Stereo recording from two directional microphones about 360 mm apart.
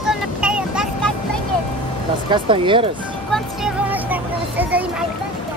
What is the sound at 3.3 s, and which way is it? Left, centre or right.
Speech, centre.